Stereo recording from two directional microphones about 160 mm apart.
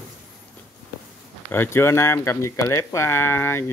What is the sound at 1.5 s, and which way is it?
Speech, 15° left (ahead or behind).